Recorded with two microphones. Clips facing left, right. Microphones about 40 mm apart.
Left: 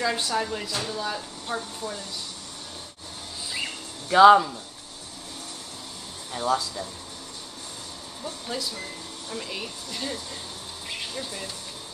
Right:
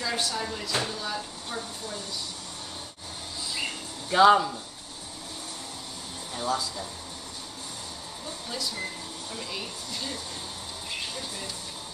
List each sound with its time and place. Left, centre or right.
0.0 s speech: centre
4.1 s speech: centre
6.3 s speech: centre
8.5 s speech: centre
11.1 s speech: centre